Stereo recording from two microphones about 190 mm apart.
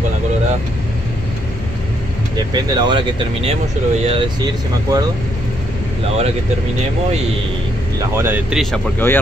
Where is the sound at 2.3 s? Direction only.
20° right (ahead or behind).